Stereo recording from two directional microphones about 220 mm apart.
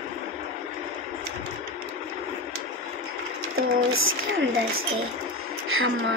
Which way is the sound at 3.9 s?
65° right (ahead or behind).